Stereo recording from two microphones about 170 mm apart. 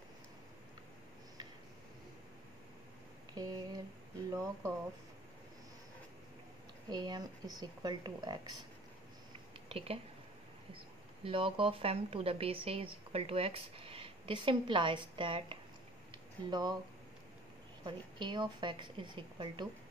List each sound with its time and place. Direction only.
3.3 s a sound: 20° right (ahead or behind)
6.9 s a woman's voice: 25° right (ahead or behind)
9.7 s speech: 35° right (ahead or behind)
11.2 s a woman's voice: 30° right (ahead or behind)
17.8 s a woman's voice: 25° right (ahead or behind)